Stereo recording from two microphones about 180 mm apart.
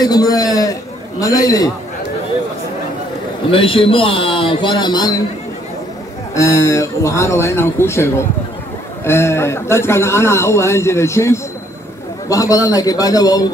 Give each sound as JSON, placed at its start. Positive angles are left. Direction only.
{"t": 0.0, "sound": "a sound", "side_deg": 20}
{"t": 1.2, "sound": "speech", "side_deg": 20}
{"t": 3.4, "sound": "speech", "side_deg": 30}
{"t": 6.3, "sound": "speech", "side_deg": 15}